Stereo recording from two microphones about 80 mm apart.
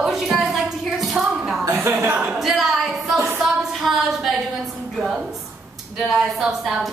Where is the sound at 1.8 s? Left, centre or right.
Right.